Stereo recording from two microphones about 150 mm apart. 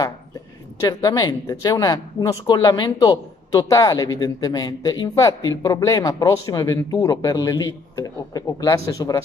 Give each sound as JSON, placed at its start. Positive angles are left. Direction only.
{"t": 0.7, "sound": "speech", "side_deg": 25}